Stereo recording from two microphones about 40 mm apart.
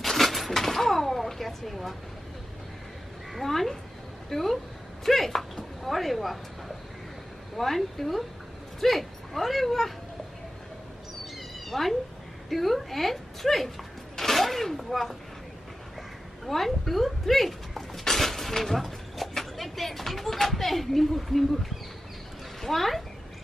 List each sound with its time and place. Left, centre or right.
0.0 s a sound: centre
1.7 s a woman's voice: centre
3.3 s a woman's voice: centre
7.5 s a woman's voice: centre
11.7 s a woman's voice: centre
14.1 s a sound: centre
16.4 s a child's voice: centre